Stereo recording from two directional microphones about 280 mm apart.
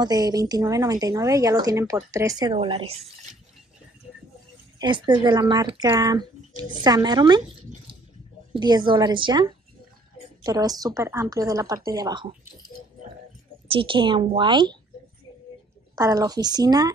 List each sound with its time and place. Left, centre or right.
0.0 s a woman's voice: centre
4.7 s a woman's voice: centre
13.7 s a woman's voice: centre
16.0 s a woman's voice: centre